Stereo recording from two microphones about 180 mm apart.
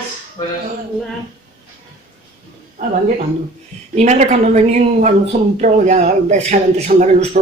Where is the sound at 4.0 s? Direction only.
40° right (ahead or behind).